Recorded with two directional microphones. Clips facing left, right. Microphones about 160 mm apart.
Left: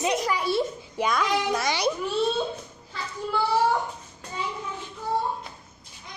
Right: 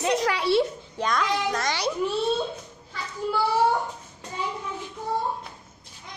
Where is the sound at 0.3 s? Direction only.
75° right (ahead or behind).